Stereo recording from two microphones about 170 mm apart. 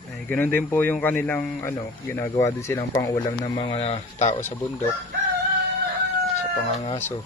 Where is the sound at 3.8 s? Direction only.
40° left (ahead or behind).